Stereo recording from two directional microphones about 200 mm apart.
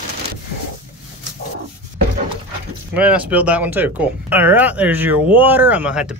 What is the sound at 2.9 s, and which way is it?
Speech, 5° right (ahead or behind).